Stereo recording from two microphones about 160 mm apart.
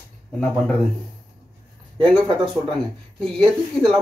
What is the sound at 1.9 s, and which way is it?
Speech, 30° right (ahead or behind).